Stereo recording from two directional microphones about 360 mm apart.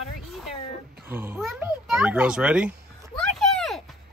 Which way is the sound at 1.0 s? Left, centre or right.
Centre.